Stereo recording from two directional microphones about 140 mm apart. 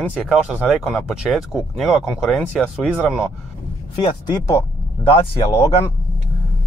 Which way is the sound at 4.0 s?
25° left (ahead or behind).